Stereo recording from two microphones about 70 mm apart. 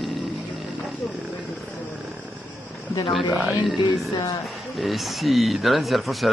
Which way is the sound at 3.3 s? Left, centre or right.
Centre.